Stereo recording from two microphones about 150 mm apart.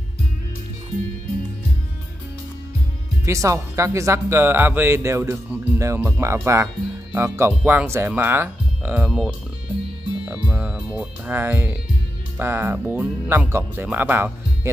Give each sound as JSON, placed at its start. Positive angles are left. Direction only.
{"t": 3.3, "sound": "speech", "side_deg": -20}
{"t": 10.2, "sound": "music", "side_deg": -10}
{"t": 12.4, "sound": "speech", "side_deg": -15}